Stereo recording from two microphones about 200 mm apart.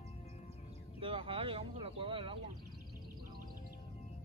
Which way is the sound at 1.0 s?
25° right (ahead or behind).